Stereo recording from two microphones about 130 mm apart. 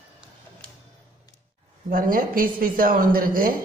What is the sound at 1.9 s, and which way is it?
A man's voice, 90° right.